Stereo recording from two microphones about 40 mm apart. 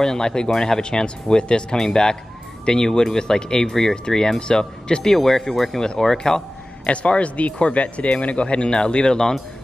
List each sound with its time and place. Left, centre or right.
0.0 s speech: centre
5.1 s speech: centre
6.9 s speech: left